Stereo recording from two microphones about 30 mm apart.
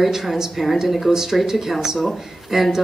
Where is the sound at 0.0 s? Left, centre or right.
Centre.